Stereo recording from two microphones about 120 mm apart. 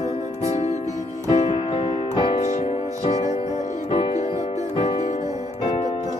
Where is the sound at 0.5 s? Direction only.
65° left (ahead or behind); by 2.3 s 45° left (ahead or behind).